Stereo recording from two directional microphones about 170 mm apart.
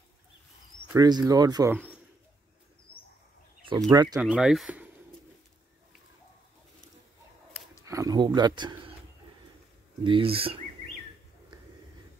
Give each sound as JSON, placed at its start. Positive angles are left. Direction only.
{"t": 0.8, "sound": "speech", "side_deg": -25}
{"t": 3.9, "sound": "speech", "side_deg": -20}
{"t": 4.2, "sound": "speech", "side_deg": -5}
{"t": 7.8, "sound": "a sound", "side_deg": -20}
{"t": 10.0, "sound": "speech", "side_deg": -30}